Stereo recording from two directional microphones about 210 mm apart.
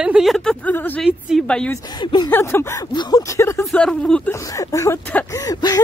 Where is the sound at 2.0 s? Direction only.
20° left (ahead or behind).